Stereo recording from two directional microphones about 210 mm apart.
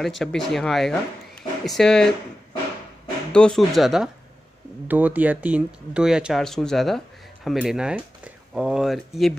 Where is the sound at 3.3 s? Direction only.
5° left (ahead or behind).